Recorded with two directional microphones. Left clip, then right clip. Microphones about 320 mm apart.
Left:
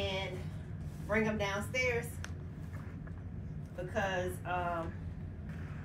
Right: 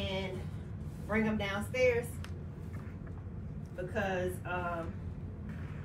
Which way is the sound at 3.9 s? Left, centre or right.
Centre.